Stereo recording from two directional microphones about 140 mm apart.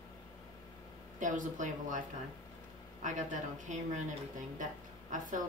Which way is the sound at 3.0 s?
60° right (ahead or behind).